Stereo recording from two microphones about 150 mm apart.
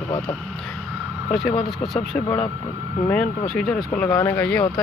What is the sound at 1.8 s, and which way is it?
Speech, centre (ahead or behind).